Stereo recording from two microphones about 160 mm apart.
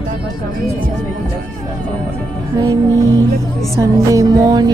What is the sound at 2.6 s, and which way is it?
Music, 20° right (ahead or behind).